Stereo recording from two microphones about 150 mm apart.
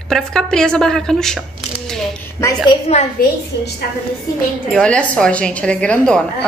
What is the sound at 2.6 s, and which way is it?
Speech, 45° left (ahead or behind).